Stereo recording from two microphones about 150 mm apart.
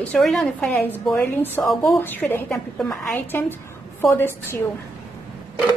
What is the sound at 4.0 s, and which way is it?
Speech, 15° left (ahead or behind).